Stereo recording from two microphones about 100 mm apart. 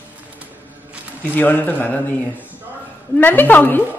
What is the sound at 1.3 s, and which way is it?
Speech, 20° left (ahead or behind).